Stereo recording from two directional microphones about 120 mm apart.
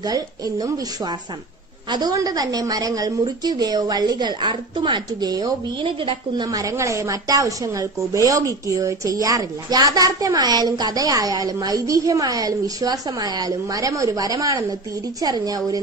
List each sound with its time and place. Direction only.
0.0 s a woman's voice: 30° right (ahead or behind)
6.4 s a woman's voice: 30° right (ahead or behind)